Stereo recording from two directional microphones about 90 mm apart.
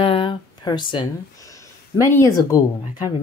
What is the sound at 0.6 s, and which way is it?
Speech, 55° left (ahead or behind).